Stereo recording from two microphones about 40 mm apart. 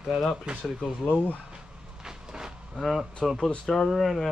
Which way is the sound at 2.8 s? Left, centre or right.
Right.